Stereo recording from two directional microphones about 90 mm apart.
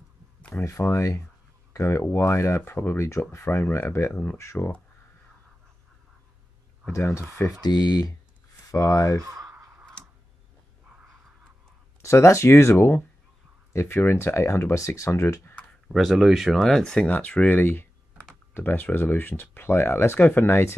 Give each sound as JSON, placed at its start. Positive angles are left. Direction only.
{"t": 0.4, "sound": "a sound", "side_deg": 20}
{"t": 0.7, "sound": "speech", "side_deg": 35}
{"t": 4.1, "sound": "speech", "side_deg": 20}
{"t": 7.0, "sound": "speech", "side_deg": 25}
{"t": 7.6, "sound": "speech", "side_deg": 50}
{"t": 8.7, "sound": "speech", "side_deg": 35}
{"t": 9.2, "sound": "a sound", "side_deg": -40}
{"t": 10.0, "sound": "tick-tock", "side_deg": 10}
{"t": 12.0, "sound": "speech", "side_deg": 35}
{"t": 15.9, "sound": "speech", "side_deg": 0}